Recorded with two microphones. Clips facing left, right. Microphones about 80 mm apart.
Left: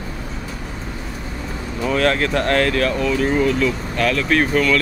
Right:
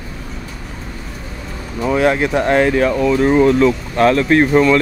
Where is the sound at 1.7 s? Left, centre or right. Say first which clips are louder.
Right 4 dB; centre.